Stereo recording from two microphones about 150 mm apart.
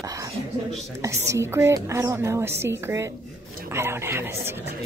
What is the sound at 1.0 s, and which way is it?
A woman's voice, 20° right (ahead or behind).